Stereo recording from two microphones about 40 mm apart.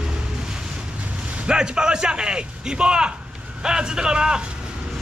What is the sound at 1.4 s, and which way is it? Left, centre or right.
A man's voice, right.